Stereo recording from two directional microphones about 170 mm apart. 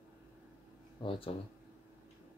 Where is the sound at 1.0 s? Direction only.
30° left (ahead or behind).